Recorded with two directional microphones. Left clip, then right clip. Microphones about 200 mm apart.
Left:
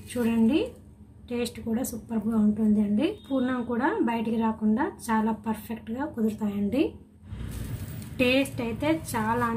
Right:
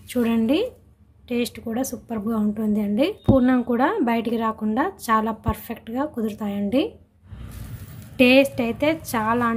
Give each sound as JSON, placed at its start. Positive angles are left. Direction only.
{"t": 1.3, "sound": "a woman's voice", "side_deg": -45}
{"t": 8.2, "sound": "a woman's voice", "side_deg": -45}